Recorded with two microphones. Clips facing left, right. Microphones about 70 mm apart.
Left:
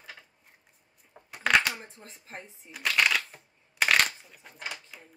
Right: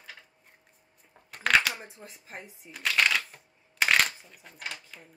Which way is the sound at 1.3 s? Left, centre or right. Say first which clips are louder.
Even; centre.